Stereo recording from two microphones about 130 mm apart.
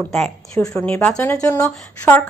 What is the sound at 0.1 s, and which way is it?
A woman's voice, 5° left (ahead or behind).